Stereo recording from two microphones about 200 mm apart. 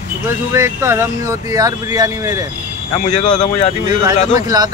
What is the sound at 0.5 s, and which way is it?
Speech, 15° right (ahead or behind).